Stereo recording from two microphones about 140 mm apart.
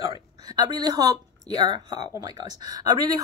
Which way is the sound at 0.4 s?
30° right (ahead or behind).